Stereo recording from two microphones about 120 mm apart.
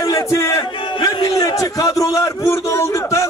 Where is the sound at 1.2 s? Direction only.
30° left (ahead or behind).